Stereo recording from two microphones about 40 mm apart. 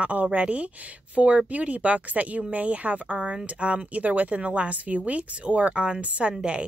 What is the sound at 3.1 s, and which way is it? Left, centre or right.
Speech, centre.